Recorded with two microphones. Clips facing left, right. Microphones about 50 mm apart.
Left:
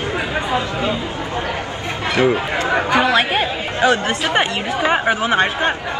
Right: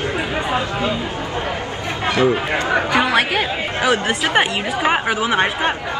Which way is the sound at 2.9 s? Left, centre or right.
Right.